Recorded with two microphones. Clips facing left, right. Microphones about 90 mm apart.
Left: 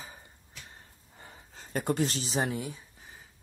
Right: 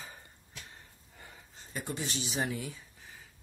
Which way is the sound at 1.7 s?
45° left (ahead or behind).